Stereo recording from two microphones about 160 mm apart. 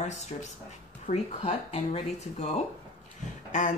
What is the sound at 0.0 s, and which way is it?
Speech, 45° left (ahead or behind).